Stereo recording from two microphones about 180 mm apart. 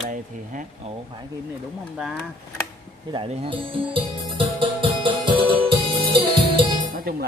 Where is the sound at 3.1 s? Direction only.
30° right (ahead or behind).